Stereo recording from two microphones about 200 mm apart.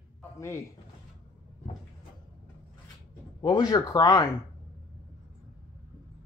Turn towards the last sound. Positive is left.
turn(degrees=20)  # may be behind; listen again after turning